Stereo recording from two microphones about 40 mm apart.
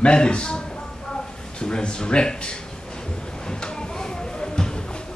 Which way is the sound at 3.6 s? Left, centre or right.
Centre.